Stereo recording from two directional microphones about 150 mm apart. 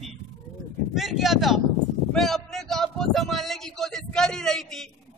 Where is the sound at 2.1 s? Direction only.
Centre (ahead or behind).